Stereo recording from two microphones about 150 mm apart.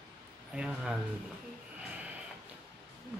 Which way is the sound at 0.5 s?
5° right (ahead or behind).